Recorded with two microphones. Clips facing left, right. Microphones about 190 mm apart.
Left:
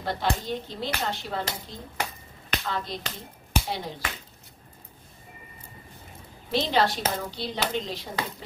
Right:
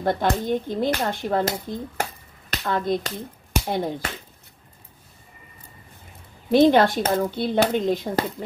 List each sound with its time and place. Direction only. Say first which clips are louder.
0.0 s speech: right 6 dB; 50° right (ahead or behind)
6.5 s speech: right 9 dB; 55° right (ahead or behind)